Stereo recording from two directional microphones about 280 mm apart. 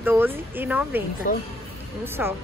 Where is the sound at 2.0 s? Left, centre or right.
Centre.